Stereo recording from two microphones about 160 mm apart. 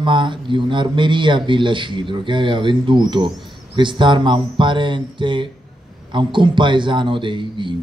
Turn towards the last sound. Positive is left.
turn(degrees=-30)  # may be behind; listen again after turning